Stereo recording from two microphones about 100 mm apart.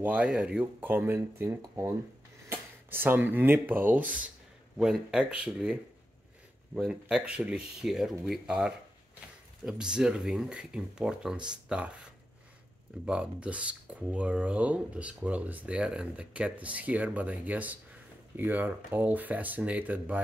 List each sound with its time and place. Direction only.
0.0 s speech: 10° right (ahead or behind); by 2.0 s 30° right (ahead or behind)
2.5 s speech: 20° right (ahead or behind)